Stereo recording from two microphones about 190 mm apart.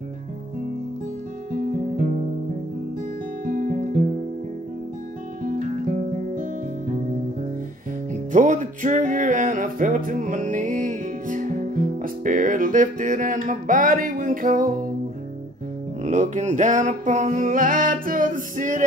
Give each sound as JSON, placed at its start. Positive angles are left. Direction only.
{"t": 3.4, "sound": "music", "side_deg": -45}
{"t": 5.4, "sound": "music", "side_deg": -45}
{"t": 8.1, "sound": "music", "side_deg": -40}
{"t": 16.0, "sound": "music", "side_deg": -40}